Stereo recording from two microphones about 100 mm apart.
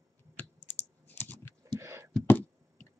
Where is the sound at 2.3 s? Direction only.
20° left (ahead or behind).